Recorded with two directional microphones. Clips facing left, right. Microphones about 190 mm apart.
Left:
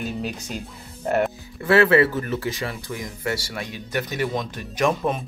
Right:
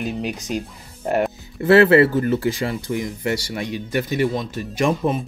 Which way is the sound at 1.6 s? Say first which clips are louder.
Right 4 dB; 30° right (ahead or behind).